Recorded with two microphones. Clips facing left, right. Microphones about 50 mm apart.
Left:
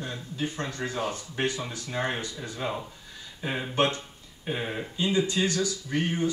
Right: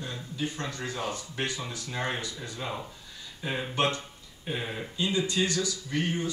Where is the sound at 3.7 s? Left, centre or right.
Left.